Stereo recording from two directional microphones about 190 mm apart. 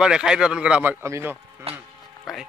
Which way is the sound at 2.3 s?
Centre (ahead or behind).